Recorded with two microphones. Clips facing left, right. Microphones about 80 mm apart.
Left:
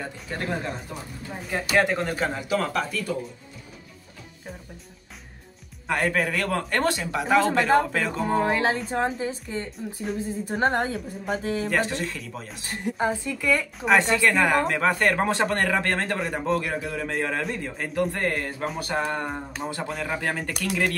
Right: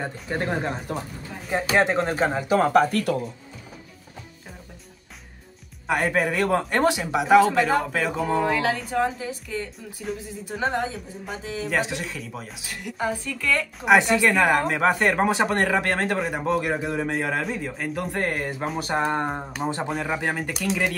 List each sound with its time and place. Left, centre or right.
0.0 s speech: right
0.9 s speech: right
1.5 s speech: right
2.9 s speech: right
5.9 s a man's voice: centre
8.5 s a woman's voice: left
10.2 s a sound: left
11.7 s speech: centre
12.6 s a woman's voice: left; by 13.7 s centre
13.7 s a man's voice: centre
14.6 s a man's voice: centre
16.6 s speech: centre
17.1 s speech: centre; by 19.4 s right
19.9 s a man's voice: centre